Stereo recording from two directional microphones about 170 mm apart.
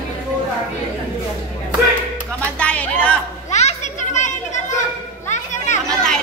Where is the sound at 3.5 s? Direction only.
45° left (ahead or behind).